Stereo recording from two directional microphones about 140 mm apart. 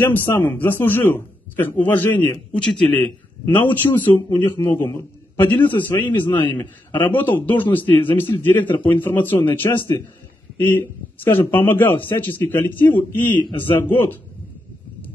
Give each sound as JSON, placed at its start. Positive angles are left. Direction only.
{"t": 0.1, "sound": "a man's voice", "side_deg": 15}